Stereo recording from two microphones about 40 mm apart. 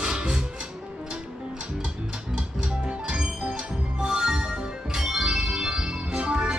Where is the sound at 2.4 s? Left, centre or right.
Right.